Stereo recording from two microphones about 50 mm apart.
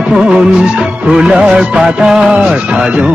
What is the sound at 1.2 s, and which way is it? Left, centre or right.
Music, centre.